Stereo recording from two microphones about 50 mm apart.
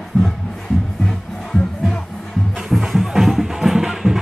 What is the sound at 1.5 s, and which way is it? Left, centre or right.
Music, centre.